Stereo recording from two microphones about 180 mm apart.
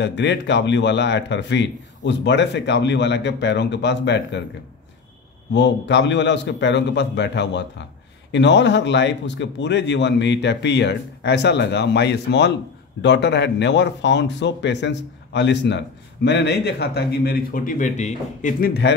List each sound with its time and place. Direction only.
0.0 s speech: 75° left (ahead or behind)
5.5 s speech: 75° left (ahead or behind); by 18.5 s 40° left (ahead or behind)
18.6 s speech: 65° left (ahead or behind)